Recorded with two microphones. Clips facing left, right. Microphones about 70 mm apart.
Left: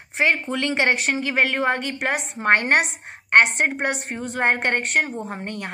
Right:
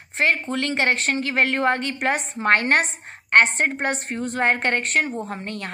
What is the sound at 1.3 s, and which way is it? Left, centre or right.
A woman's voice, centre.